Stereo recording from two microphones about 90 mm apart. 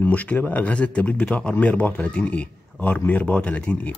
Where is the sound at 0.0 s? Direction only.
20° left (ahead or behind).